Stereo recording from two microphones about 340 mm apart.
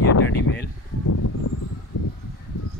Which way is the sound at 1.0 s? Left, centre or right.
Left.